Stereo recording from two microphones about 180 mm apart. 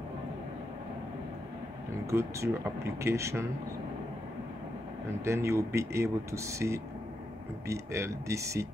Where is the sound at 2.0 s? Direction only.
15° right (ahead or behind).